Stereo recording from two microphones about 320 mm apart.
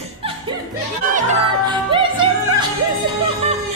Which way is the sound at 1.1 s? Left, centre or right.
Centre.